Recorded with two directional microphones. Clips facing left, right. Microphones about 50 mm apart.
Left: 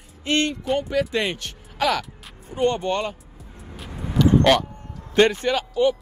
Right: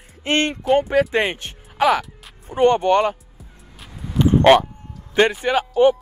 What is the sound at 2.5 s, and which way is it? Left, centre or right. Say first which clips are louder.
Speech: right 7 dB; right.